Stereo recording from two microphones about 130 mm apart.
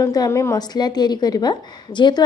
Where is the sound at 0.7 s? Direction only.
35° left (ahead or behind).